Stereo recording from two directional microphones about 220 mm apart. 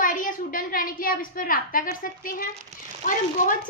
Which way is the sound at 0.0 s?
40° left (ahead or behind).